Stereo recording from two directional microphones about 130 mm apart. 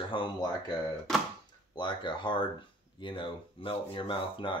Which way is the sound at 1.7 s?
35° left (ahead or behind).